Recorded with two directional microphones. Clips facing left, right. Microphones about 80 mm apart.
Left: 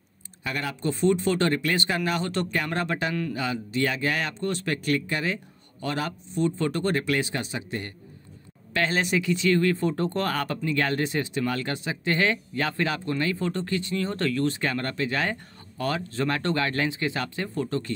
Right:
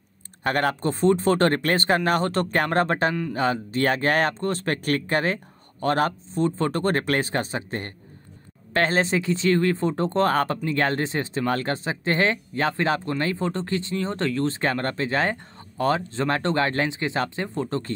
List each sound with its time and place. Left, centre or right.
0.4 s speech: right